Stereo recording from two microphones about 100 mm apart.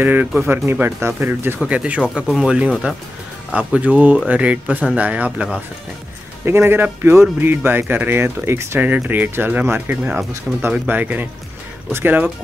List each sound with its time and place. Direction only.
0.0 s speech: 20° right (ahead or behind)
1.6 s speech: 10° right (ahead or behind)
6.4 s speech: 20° right (ahead or behind)